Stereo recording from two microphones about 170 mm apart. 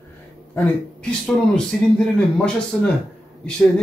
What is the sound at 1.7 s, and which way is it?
Speech, 5° left (ahead or behind).